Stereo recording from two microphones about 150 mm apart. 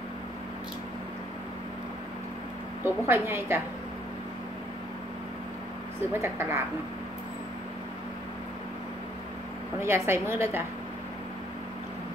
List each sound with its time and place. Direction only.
2.8 s a woman's voice: 15° right (ahead or behind)
6.1 s a woman's voice: 15° right (ahead or behind)
9.8 s a woman's voice: 15° right (ahead or behind)